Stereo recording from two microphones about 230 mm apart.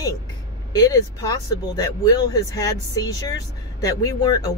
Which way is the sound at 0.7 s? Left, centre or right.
Centre.